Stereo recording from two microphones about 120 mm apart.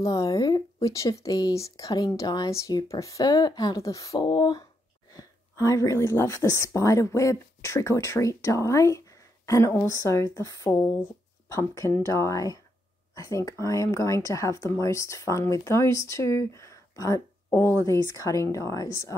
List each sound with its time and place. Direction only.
0.0 s speech: 30° left (ahead or behind)